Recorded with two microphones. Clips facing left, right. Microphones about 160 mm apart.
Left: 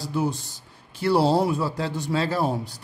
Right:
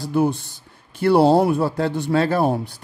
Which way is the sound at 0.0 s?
55° right (ahead or behind).